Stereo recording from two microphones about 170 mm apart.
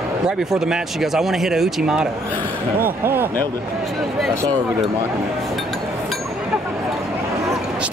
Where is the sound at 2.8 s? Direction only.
15° right (ahead or behind).